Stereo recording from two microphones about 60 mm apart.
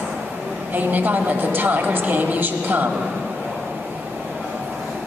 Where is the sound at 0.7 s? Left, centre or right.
Right.